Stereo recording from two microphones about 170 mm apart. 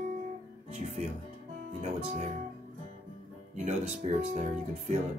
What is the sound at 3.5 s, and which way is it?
Speech, 45° right (ahead or behind).